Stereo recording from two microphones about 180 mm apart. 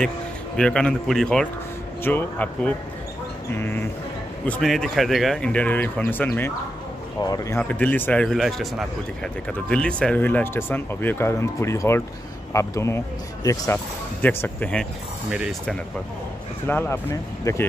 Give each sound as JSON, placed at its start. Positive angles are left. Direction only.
{"t": 0.6, "sound": "speech", "side_deg": 5}
{"t": 16.6, "sound": "speech", "side_deg": 10}